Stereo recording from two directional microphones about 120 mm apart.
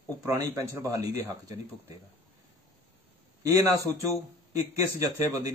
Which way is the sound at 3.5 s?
25° right (ahead or behind).